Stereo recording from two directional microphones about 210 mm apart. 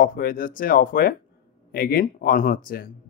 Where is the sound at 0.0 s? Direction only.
45° left (ahead or behind).